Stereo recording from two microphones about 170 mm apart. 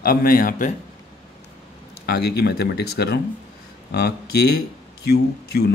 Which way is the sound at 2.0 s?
65° left (ahead or behind).